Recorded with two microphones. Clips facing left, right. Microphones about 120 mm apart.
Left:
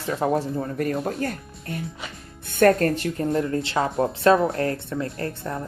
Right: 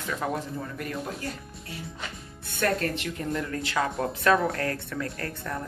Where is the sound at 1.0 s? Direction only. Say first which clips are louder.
Left 8 dB; 55° left (ahead or behind).